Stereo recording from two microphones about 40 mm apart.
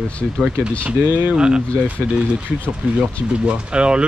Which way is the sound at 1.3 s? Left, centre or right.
Right.